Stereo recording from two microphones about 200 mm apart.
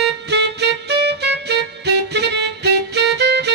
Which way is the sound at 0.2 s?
60° right (ahead or behind).